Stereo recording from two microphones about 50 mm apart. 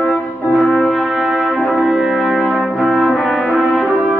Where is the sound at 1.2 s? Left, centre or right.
Right.